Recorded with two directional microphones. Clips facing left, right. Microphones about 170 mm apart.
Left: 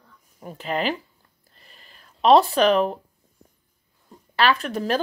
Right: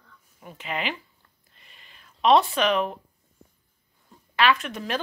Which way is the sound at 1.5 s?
40° left (ahead or behind).